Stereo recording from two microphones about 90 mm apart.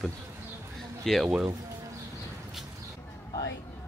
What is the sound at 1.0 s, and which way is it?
Speech, centre (ahead or behind).